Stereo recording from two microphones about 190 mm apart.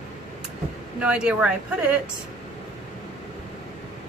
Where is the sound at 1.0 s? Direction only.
5° right (ahead or behind).